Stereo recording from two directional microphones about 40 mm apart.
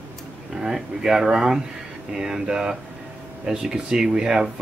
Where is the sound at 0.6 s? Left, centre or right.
Centre.